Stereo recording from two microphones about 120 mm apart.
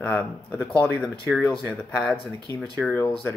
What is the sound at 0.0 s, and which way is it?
Speech, 10° left (ahead or behind).